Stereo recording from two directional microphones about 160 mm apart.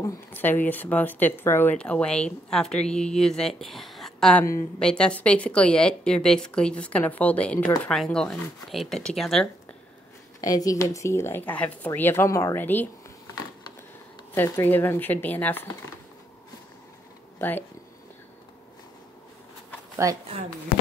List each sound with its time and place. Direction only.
0.0 s speech: 10° left (ahead or behind)
10.4 s speech: 20° left (ahead or behind)
14.3 s speech: 15° left (ahead or behind)
17.4 s speech: 10° left (ahead or behind)
20.0 s speech: 20° right (ahead or behind)